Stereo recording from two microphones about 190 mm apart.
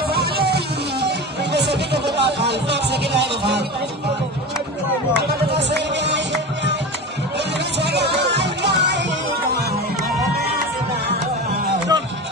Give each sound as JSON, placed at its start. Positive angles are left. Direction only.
{"t": 0.1, "sound": "music", "side_deg": -55}
{"t": 5.1, "sound": "music", "side_deg": -60}
{"t": 11.9, "sound": "music", "side_deg": -20}